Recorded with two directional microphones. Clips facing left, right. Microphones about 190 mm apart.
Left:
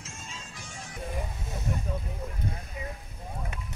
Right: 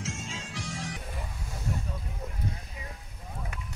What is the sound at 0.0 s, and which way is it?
Music, 90° right.